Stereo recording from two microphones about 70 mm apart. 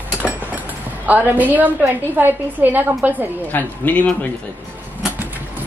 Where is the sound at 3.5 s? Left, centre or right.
Left.